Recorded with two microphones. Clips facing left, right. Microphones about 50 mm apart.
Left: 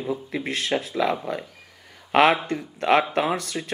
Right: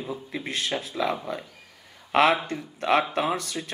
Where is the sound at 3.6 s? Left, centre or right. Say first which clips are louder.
Left 3 dB; left.